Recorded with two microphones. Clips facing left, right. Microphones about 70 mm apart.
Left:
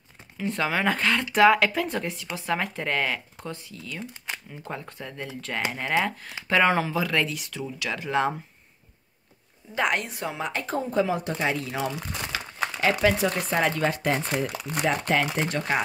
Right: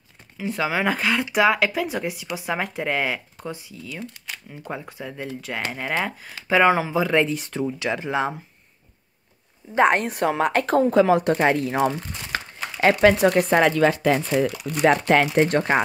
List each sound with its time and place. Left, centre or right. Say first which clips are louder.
0.4 s speech: right 2 dB; centre; by 7.9 s right
8.1 s speech: left 2 dB; centre
9.8 s a woman's voice: right 7 dB; right
10.0 s speech: right 10 dB; right
11.3 s speech: right 7 dB; right
14.8 s speech: right 7 dB; right
15.3 s speech: right 9 dB; right